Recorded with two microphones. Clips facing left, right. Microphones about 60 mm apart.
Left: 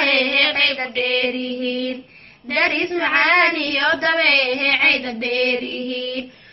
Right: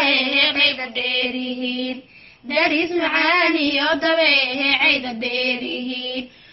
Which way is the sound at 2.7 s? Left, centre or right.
Left.